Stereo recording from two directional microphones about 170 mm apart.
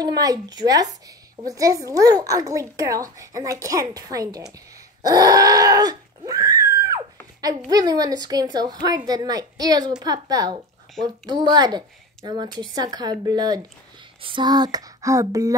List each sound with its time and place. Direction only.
0.0 s a woman's voice: 20° right (ahead or behind)
5.0 s a sound: 20° right (ahead or behind)
7.4 s a woman's voice: 20° right (ahead or behind)